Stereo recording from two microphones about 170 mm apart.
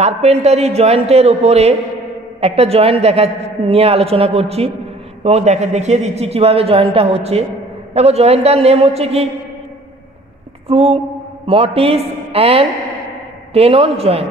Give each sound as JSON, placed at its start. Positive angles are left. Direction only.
{"t": 0.0, "sound": "a man's voice", "side_deg": -40}
{"t": 10.7, "sound": "a man's voice", "side_deg": -35}